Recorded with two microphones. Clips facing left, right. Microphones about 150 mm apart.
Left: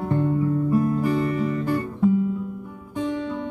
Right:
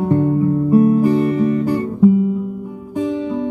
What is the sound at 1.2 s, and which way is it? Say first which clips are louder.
Guitar: right 7 dB; 25° right (ahead or behind).